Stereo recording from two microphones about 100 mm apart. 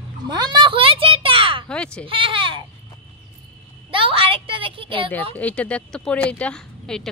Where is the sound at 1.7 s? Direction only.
10° left (ahead or behind).